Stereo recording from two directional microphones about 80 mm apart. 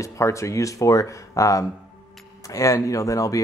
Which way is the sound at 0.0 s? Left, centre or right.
Left.